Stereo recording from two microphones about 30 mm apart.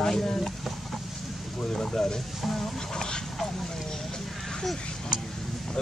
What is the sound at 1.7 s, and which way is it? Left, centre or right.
Speech, centre.